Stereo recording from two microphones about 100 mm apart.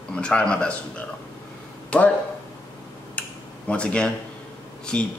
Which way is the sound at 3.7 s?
10° left (ahead or behind).